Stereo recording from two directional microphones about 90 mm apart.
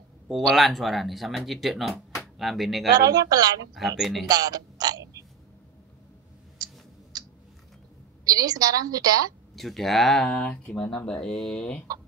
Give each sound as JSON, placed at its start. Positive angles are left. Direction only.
{"t": 0.3, "sound": "speech", "side_deg": 0}
{"t": 3.0, "sound": "a woman's voice", "side_deg": -45}
{"t": 3.7, "sound": "speech", "side_deg": 0}
{"t": 4.3, "sound": "speech", "side_deg": -45}
{"t": 6.6, "sound": "tick", "side_deg": -45}
{"t": 8.3, "sound": "a woman's voice", "side_deg": -45}
{"t": 9.6, "sound": "speech", "side_deg": 0}